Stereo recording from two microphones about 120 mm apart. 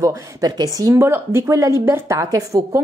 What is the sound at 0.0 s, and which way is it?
Speech, 30° right (ahead or behind).